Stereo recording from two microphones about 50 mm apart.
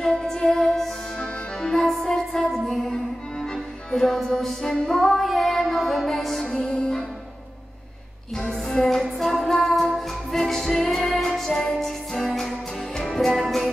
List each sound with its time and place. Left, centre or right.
0.1 s music: centre
6.4 s music: centre
8.4 s music: centre